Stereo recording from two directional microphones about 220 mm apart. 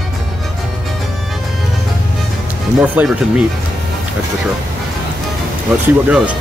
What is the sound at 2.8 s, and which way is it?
Speech, 5° right (ahead or behind).